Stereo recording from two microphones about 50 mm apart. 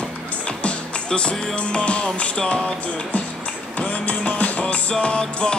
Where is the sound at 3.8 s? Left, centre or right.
Left.